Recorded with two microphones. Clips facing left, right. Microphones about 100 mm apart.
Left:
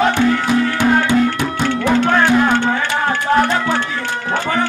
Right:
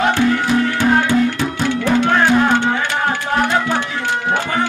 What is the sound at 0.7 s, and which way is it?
Music, 15° left (ahead or behind).